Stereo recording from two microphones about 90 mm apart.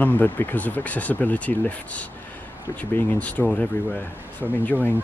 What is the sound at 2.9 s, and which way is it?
Speech, 15° left (ahead or behind).